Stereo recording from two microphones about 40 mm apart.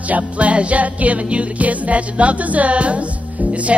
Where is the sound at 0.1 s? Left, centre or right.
Right.